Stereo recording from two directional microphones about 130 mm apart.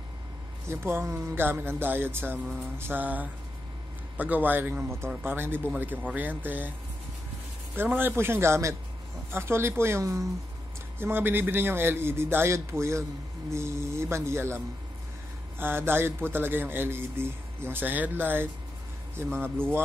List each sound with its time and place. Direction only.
0.7 s a man's voice: 20° right (ahead or behind)
7.7 s a man's voice: 15° right (ahead or behind)
15.6 s a man's voice: 15° right (ahead or behind)